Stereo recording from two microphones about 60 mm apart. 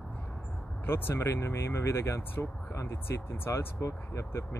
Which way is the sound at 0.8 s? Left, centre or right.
Left.